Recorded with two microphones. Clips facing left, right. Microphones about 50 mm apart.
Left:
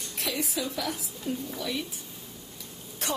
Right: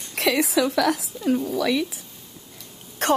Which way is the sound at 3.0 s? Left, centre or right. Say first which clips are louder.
Right 12 dB; right.